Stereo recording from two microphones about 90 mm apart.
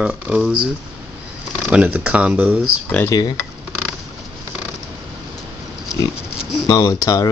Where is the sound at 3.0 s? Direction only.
45° left (ahead or behind).